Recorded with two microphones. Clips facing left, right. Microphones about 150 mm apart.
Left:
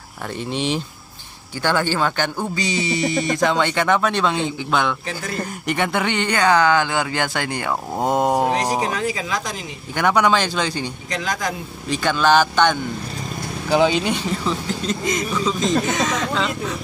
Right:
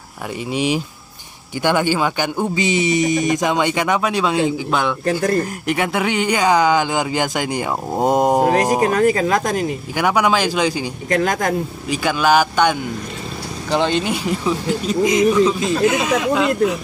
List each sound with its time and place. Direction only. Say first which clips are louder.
0.5 s speech: right 4 dB; 10° right (ahead or behind)
8.8 s speech: right 8 dB; 50° right (ahead or behind)
9.9 s speech: even; 10° right (ahead or behind)
11.1 s speech: right 9 dB; 50° right (ahead or behind)
11.9 s speech: right 1 dB; 10° right (ahead or behind)
13.7 s speech: left 1 dB; 5° left (ahead or behind)
14.1 s speech: right 3 dB; 10° right (ahead or behind)